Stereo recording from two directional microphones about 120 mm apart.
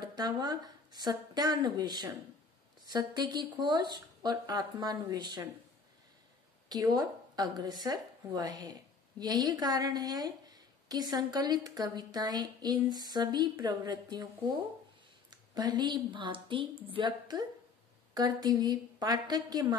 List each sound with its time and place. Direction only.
0.0 s a woman's voice: 35° right (ahead or behind)
6.7 s a woman's voice: 35° right (ahead or behind)
15.2 s a woman's voice: 35° right (ahead or behind)